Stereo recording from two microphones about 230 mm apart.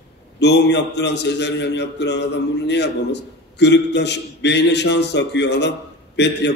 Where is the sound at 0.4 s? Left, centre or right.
Left.